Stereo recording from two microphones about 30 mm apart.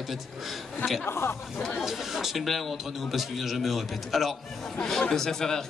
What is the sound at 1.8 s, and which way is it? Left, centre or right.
Speech, centre.